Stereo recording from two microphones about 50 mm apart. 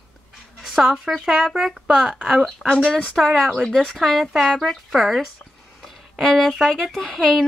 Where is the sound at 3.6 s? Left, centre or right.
Centre.